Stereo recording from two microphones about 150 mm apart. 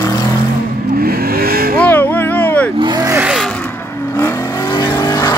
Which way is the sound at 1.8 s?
15° left (ahead or behind).